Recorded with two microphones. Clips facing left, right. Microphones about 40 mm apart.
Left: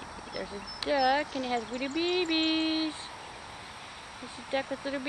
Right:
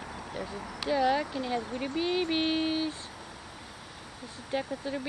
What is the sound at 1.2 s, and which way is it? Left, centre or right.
Speech, left.